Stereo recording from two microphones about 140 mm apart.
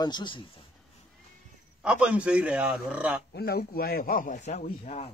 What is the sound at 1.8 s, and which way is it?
Speech, 5° right (ahead or behind).